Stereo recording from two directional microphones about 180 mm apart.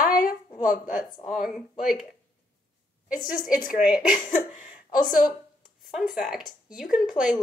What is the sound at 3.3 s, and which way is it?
Speech, 50° left (ahead or behind).